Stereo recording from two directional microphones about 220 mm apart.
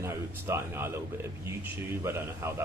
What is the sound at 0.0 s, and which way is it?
A man's voice, 10° right (ahead or behind).